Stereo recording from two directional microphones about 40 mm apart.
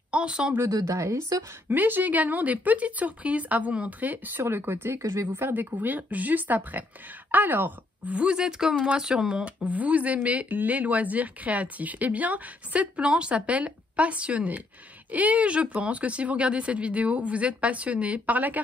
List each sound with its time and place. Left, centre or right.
0.1 s speech: right
1.7 s speech: right
5.3 s speech: right
8.2 s speech: right
9.6 s speech: right
10.5 s speech: right